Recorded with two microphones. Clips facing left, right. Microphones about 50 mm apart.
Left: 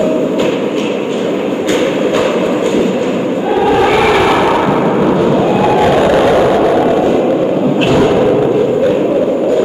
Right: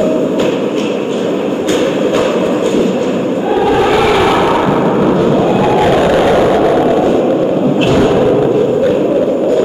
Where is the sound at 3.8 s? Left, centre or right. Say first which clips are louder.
Even; centre.